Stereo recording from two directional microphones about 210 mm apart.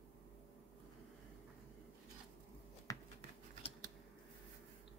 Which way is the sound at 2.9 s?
15° left (ahead or behind).